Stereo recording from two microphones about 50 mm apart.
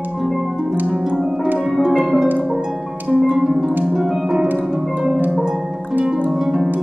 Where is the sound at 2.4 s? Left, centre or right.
Centre.